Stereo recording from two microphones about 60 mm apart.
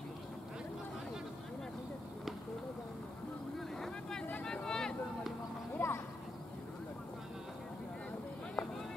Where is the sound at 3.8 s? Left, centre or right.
Centre.